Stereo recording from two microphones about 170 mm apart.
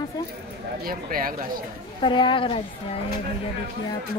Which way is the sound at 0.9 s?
55° right (ahead or behind).